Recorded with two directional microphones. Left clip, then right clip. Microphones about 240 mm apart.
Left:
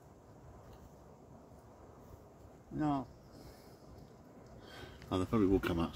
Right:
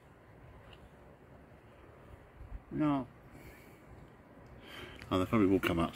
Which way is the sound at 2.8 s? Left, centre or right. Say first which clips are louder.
Right 3 dB; centre.